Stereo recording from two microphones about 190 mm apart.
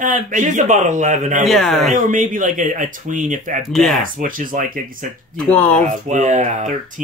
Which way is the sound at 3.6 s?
Centre (ahead or behind).